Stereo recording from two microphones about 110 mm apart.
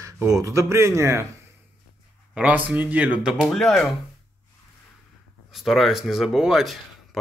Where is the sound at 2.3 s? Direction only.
15° right (ahead or behind).